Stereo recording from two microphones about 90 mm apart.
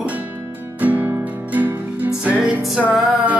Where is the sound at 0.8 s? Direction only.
20° right (ahead or behind).